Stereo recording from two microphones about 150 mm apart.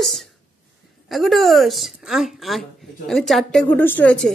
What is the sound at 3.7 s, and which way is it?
Speech, 10° left (ahead or behind).